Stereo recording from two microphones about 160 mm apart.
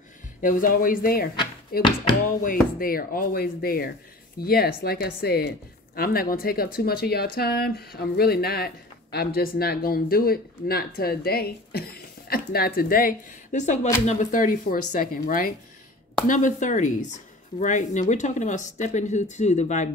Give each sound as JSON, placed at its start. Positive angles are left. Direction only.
{"t": 0.4, "sound": "speech", "side_deg": 60}
{"t": 5.9, "sound": "a woman's voice", "side_deg": 65}